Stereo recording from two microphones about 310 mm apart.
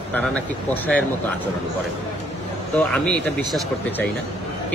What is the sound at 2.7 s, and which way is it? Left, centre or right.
Speech, centre.